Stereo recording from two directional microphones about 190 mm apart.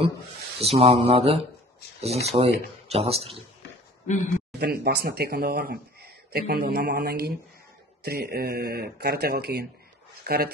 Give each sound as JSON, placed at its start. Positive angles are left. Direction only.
{"t": 0.6, "sound": "speech", "side_deg": -30}
{"t": 4.6, "sound": "speech", "side_deg": -55}